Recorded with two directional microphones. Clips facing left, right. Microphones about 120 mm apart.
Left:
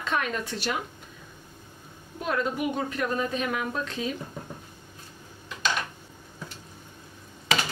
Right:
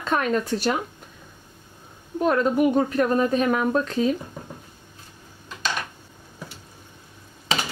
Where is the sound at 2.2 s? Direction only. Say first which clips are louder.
Right 8 dB; 45° right (ahead or behind).